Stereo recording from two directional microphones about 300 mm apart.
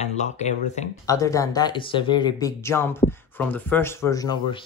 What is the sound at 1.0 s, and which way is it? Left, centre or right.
Speech, centre.